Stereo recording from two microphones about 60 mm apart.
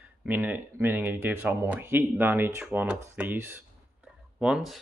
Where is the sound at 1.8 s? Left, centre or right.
Right.